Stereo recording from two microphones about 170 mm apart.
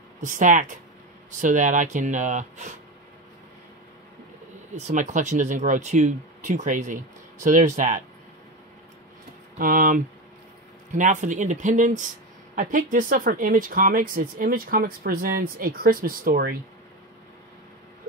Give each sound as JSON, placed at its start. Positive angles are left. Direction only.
{"t": 0.2, "sound": "speech", "side_deg": -50}
{"t": 4.7, "sound": "speech", "side_deg": -40}
{"t": 9.6, "sound": "speech", "side_deg": -55}